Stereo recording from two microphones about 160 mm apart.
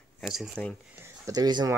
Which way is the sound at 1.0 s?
20° right (ahead or behind).